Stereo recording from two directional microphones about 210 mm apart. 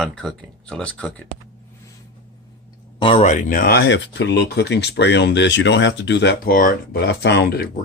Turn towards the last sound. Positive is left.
turn(degrees=50)  # may be behind; listen again after turning